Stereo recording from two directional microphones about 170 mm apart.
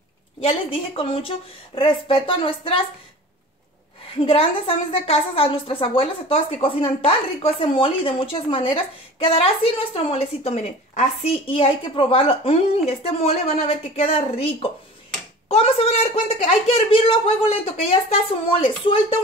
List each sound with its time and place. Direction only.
0.4 s a woman's voice: 30° left (ahead or behind)
4.2 s a woman's voice: 30° left (ahead or behind)